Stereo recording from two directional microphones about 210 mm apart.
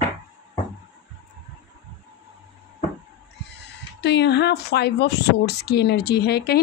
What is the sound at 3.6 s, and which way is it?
Speech, 55° left (ahead or behind).